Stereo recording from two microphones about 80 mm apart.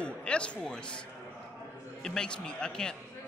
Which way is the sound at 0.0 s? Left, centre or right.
Centre.